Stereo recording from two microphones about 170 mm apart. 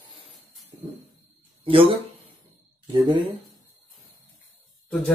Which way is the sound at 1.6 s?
35° right (ahead or behind).